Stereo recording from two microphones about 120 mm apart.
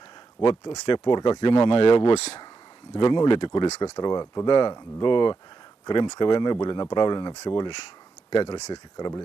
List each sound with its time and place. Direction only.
0.4 s speech: 40° left (ahead or behind)
3.0 s speech: 40° left (ahead or behind)
3.8 s speech: 30° left (ahead or behind)
8.5 s speech: 65° left (ahead or behind)
8.9 s speech: 30° left (ahead or behind)